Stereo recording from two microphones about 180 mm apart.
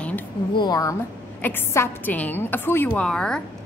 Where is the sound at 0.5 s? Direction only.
25° left (ahead or behind).